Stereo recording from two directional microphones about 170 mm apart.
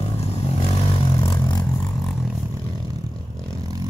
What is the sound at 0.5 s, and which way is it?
Vehicle, 35° left (ahead or behind).